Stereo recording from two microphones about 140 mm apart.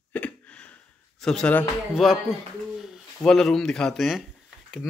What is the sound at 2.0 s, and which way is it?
Speech, centre (ahead or behind).